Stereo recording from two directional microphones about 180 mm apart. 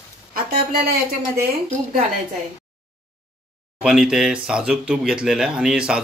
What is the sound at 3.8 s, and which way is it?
Speech, 5° right (ahead or behind).